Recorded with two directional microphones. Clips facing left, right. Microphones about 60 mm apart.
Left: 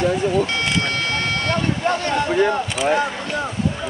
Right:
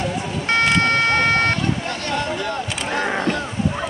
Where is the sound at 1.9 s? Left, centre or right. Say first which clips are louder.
Left 4 dB; left.